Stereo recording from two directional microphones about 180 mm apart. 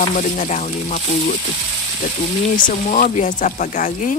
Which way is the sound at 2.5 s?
45° left (ahead or behind).